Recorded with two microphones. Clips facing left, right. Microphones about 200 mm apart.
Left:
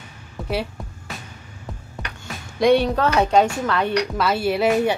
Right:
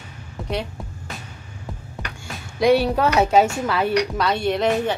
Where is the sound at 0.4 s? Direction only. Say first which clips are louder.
Left 1 dB; centre (ahead or behind).